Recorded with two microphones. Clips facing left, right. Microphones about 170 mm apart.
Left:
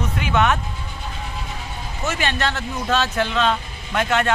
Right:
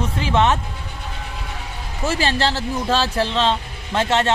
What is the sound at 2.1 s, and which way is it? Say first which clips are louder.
Speech: right 3 dB; 30° right (ahead or behind).